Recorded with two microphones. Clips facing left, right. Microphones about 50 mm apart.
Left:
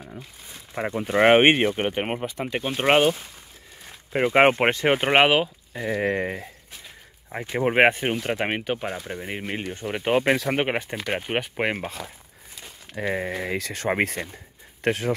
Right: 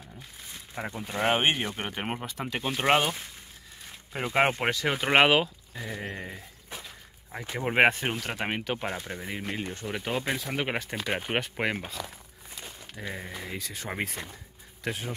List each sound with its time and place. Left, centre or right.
0.9 s speech: left
1.7 s speech: left
2.1 s speech: centre
4.1 s speech: left
5.1 s speech: centre
5.9 s speech: left
7.3 s speech: left
8.7 s speech: centre
9.3 s speech: left
10.2 s speech: left
10.7 s speech: left
11.0 s speech: centre
12.9 s speech: left
14.9 s speech: left